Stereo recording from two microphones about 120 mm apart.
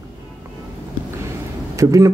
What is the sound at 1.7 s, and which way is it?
Speech, 25° right (ahead or behind).